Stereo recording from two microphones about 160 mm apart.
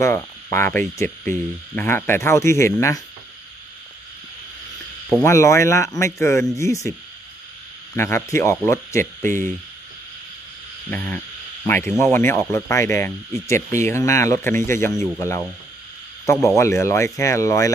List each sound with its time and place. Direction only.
0.0 s speech: 15° left (ahead or behind)
5.2 s speech: 15° left (ahead or behind)
7.9 s speech: 15° left (ahead or behind)
10.9 s speech: 10° left (ahead or behind)
16.4 s speech: 20° left (ahead or behind)